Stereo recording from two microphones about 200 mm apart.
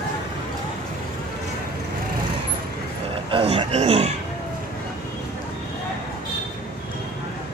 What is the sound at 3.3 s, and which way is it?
Speech, 30° right (ahead or behind).